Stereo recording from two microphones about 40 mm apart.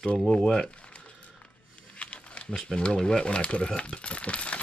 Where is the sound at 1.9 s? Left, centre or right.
Left.